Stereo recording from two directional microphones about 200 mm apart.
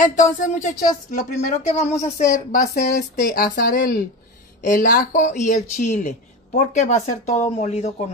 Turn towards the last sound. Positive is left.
turn(degrees=35)  # may be behind; listen again after turning